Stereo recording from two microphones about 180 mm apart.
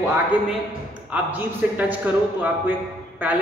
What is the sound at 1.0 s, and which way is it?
A man's voice, 10° right (ahead or behind).